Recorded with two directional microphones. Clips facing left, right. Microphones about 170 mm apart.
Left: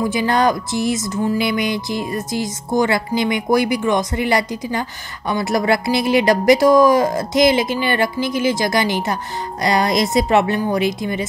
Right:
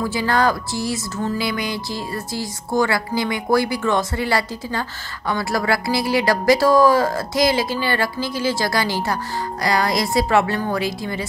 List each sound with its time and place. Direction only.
0.0 s speech: 20° left (ahead or behind)